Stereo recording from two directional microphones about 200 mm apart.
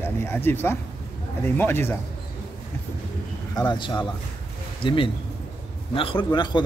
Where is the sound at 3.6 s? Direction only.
25° left (ahead or behind).